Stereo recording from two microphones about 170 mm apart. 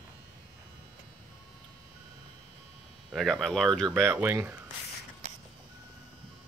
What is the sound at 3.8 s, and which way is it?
Speech, 15° right (ahead or behind).